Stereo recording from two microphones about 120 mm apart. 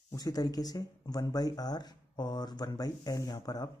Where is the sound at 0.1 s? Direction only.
30° left (ahead or behind).